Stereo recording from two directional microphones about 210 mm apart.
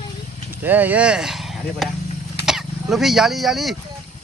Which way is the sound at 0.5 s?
10° right (ahead or behind).